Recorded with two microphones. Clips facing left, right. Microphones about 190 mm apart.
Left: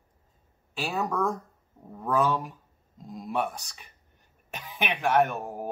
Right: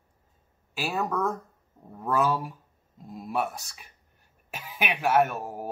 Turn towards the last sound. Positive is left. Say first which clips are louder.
# even
turn(degrees=-5)  # may be behind; listen again after turning